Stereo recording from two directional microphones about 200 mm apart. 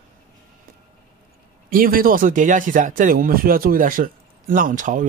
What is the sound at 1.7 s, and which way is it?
A man's voice, 45° right (ahead or behind).